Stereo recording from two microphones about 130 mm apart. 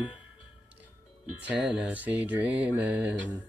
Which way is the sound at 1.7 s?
10° right (ahead or behind).